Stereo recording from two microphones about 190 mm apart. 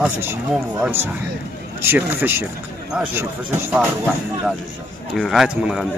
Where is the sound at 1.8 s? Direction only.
10° right (ahead or behind).